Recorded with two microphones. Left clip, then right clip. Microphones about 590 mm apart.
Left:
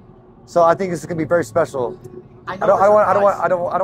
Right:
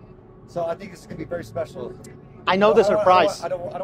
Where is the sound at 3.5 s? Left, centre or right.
Left.